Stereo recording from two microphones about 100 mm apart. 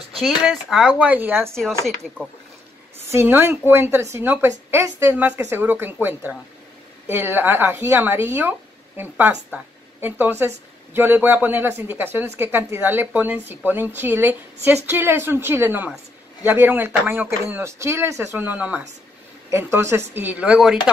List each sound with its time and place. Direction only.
0.2 s speech: centre (ahead or behind); by 1.5 s 20° right (ahead or behind)
3.1 s speech: 25° right (ahead or behind)
18.4 s speech: 15° right (ahead or behind)